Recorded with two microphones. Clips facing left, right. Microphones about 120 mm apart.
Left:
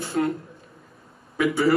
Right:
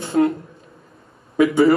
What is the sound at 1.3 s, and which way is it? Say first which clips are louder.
Speech: right 7 dB; 25° right (ahead or behind).